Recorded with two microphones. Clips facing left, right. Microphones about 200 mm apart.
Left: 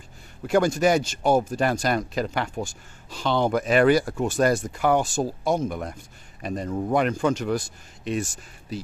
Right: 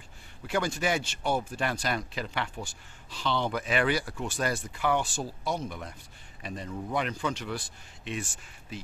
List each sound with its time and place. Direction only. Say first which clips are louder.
0.5 s speech: left 9 dB; 45° left (ahead or behind)